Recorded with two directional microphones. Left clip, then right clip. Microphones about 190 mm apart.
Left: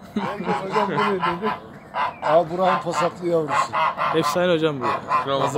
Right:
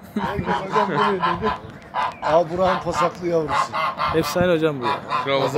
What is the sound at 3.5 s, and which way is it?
Goose, 30° left (ahead or behind).